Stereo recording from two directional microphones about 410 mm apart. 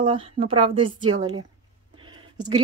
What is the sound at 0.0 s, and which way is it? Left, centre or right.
A woman's voice, centre.